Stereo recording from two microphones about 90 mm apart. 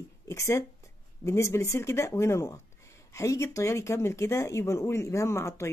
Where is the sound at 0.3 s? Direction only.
35° left (ahead or behind).